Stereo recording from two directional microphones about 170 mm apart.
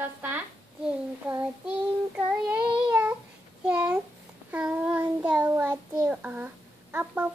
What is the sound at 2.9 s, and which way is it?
Child singing, 10° right (ahead or behind).